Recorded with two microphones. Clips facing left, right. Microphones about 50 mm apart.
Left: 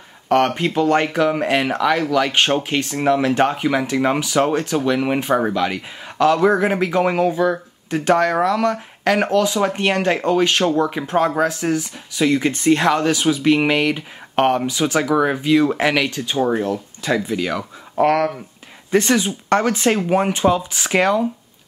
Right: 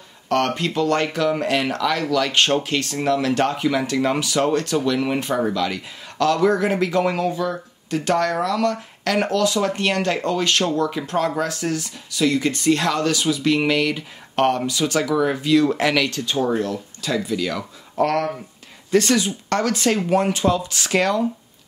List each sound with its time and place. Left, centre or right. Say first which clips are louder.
0.3 s speech: left 4 dB; left